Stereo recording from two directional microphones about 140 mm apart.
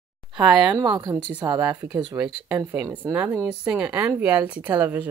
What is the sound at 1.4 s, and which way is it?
Speech, 30° right (ahead or behind).